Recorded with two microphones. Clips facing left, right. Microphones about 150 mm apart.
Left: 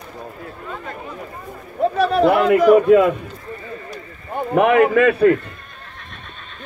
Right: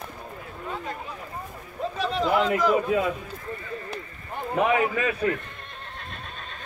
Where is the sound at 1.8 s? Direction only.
65° left (ahead or behind).